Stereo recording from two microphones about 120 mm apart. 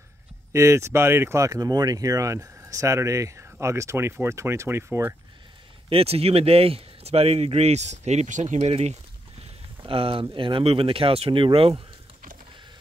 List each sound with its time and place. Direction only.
0.5 s speech: 25° right (ahead or behind)
5.9 s speech: 55° right (ahead or behind)
9.8 s speech: 50° right (ahead or behind)